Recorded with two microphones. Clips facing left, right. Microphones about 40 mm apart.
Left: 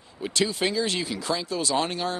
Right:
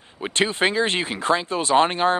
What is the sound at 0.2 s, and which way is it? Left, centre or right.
Speech, right.